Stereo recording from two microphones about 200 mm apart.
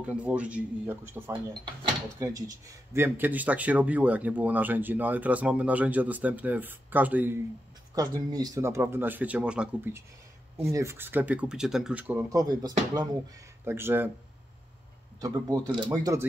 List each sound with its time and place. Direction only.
0.0 s speech: 5° right (ahead or behind)
1.5 s speech: 25° right (ahead or behind)
7.9 s speech: 20° right (ahead or behind)
15.1 s speech: 20° right (ahead or behind)